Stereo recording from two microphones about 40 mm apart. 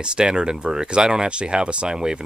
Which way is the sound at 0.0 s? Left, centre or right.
Right.